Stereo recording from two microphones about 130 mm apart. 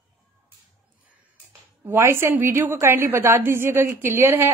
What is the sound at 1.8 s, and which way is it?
A woman's voice, 20° right (ahead or behind).